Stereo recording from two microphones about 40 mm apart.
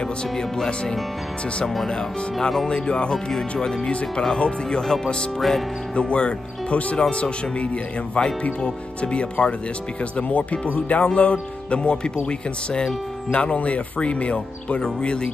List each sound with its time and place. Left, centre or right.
2.7 s speech: left
4.4 s speech: left
4.8 s speech: centre
5.9 s speech: left